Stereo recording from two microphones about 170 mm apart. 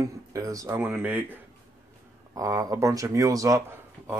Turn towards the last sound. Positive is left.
turn(degrees=-20)  # may be behind; listen again after turning